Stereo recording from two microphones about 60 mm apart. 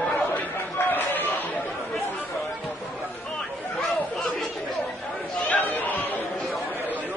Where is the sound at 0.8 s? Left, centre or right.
Left.